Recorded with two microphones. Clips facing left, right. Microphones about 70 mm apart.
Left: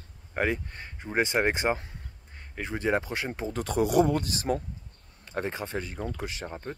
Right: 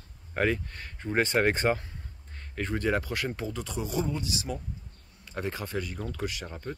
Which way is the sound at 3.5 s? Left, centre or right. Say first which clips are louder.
Left 8 dB; left.